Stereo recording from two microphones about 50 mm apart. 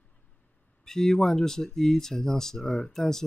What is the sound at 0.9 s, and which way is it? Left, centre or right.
Speech, centre.